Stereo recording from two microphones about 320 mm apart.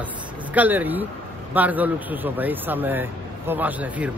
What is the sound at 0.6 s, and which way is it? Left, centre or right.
A man's voice, centre.